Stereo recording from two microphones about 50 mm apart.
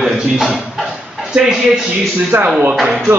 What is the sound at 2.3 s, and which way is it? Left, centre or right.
Speech, right.